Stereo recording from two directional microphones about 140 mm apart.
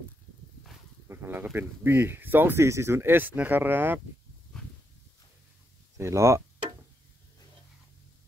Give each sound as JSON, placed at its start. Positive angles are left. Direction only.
{"t": 1.0, "sound": "speech", "side_deg": -15}
{"t": 5.9, "sound": "speech", "side_deg": -20}